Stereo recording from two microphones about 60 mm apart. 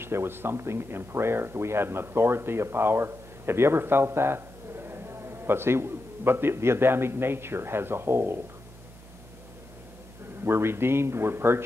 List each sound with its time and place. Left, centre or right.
0.0 s speech: right
10.4 s speech: right